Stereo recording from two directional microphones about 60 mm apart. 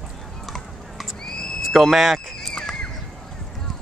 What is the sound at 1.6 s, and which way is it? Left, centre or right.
Speech, centre.